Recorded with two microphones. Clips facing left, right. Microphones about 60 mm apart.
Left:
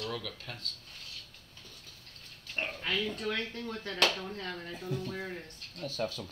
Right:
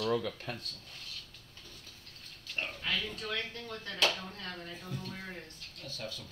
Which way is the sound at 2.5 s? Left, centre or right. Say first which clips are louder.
Left 1 dB; left.